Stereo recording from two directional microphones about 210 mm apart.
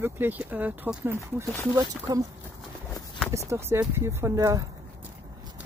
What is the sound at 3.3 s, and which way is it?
Speech, 15° right (ahead or behind).